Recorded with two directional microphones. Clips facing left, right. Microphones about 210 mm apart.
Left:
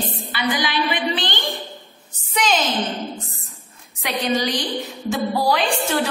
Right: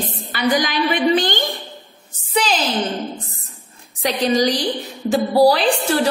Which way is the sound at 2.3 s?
35° right (ahead or behind).